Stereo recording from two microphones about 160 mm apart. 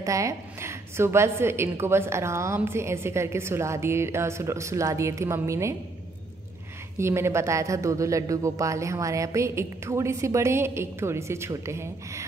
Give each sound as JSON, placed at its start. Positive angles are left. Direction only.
{"t": 0.0, "sound": "a woman's voice", "side_deg": -20}
{"t": 7.0, "sound": "a man's voice", "side_deg": -15}